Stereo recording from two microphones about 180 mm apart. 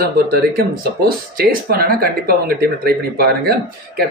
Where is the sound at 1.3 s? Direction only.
55° right (ahead or behind).